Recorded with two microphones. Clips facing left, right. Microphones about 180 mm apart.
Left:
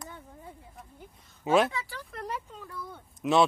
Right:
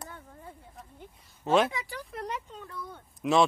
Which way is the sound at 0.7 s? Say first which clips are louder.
Right 1 dB; 5° left (ahead or behind).